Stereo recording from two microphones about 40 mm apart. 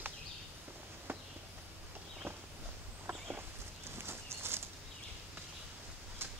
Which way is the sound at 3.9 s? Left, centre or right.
Right.